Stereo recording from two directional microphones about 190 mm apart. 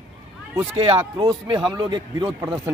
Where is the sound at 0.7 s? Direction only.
25° right (ahead or behind).